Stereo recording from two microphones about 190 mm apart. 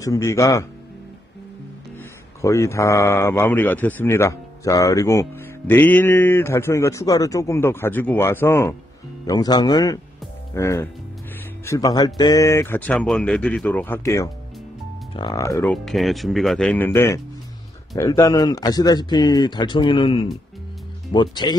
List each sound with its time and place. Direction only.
0.0 s speech: 15° left (ahead or behind)
2.4 s speech: 15° left (ahead or behind)
15.7 s speech: centre (ahead or behind); by 21.5 s 25° left (ahead or behind)